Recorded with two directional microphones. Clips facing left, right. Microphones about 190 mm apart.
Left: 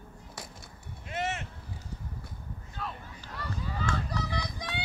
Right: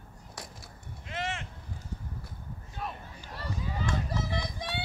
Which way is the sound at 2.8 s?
15° right (ahead or behind).